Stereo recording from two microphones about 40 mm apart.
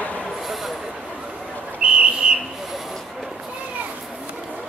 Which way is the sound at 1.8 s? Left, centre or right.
Right.